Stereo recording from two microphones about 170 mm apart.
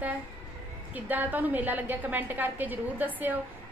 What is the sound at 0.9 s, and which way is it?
A woman's voice, 10° right (ahead or behind).